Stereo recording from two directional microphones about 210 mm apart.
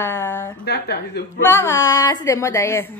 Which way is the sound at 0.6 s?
50° left (ahead or behind).